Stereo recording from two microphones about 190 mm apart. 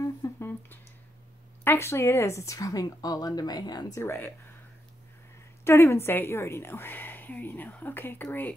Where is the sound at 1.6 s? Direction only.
10° left (ahead or behind).